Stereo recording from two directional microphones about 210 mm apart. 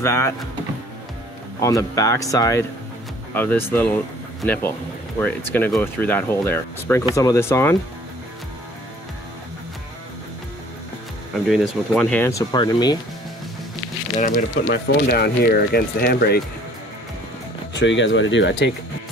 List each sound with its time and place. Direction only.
0.0 s speech: 10° left (ahead or behind)
1.6 s speech: 15° left (ahead or behind)
11.4 s speech: centre (ahead or behind); by 12.9 s 20° left (ahead or behind)
14.1 s speech: 40° left (ahead or behind)
14.7 s speech: 50° left (ahead or behind)
17.7 s speech: 60° left (ahead or behind)